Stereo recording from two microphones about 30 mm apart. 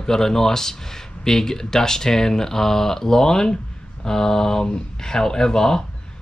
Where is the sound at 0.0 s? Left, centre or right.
Centre.